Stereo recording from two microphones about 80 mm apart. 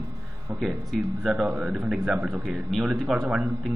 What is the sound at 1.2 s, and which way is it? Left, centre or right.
Speech, centre.